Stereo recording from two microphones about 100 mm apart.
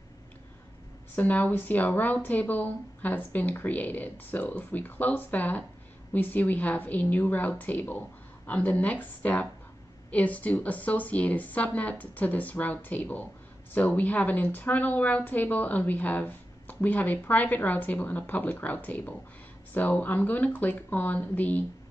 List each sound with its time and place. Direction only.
1.1 s a woman's voice: 15° left (ahead or behind)